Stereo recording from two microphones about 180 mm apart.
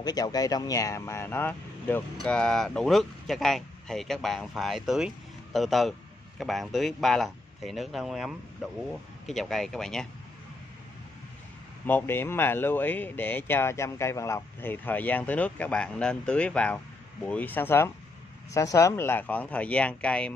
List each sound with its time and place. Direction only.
0.0 s speech: 20° left (ahead or behind); by 10.0 s 5° left (ahead or behind)
11.8 s speech: 10° left (ahead or behind)